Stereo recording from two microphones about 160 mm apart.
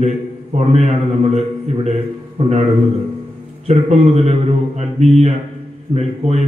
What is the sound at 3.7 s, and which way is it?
A man's voice, 40° right (ahead or behind).